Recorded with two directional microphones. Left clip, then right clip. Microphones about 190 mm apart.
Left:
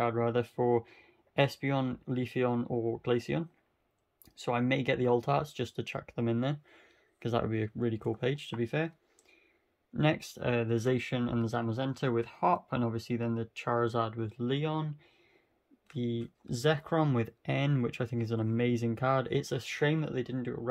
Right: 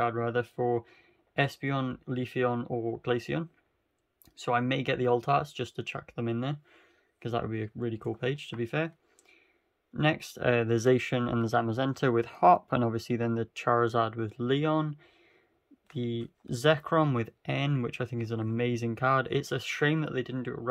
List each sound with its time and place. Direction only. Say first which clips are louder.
0.0 s speech: right 1 dB; centre (ahead or behind)